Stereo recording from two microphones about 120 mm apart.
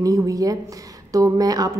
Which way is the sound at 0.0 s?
30° right (ahead or behind).